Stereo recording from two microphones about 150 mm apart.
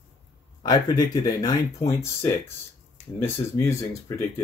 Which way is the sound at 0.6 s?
25° left (ahead or behind).